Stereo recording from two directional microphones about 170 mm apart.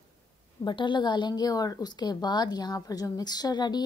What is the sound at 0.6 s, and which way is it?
A woman's voice, 25° left (ahead or behind).